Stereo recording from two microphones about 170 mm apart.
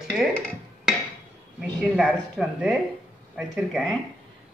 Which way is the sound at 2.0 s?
Centre (ahead or behind).